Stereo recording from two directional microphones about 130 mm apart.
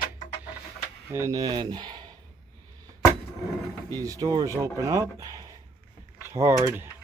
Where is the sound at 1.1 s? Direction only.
25° right (ahead or behind).